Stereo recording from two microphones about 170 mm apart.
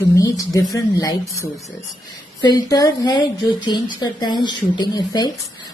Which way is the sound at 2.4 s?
25° left (ahead or behind).